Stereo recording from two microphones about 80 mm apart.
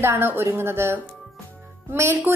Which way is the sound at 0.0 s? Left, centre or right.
Right.